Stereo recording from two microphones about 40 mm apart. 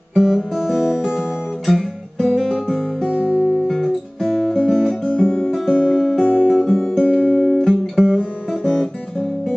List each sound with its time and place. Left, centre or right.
0.1 s guitar: centre
0.6 s music: centre
1.7 s guitar: centre
3.3 s music: centre
3.7 s music: centre
5.8 s music: centre
6.2 s guitar: centre
7.1 s music: right
7.5 s guitar: centre
8.2 s guitar: centre